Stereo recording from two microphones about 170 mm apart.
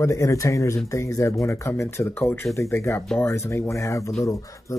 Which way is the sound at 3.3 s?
15° left (ahead or behind).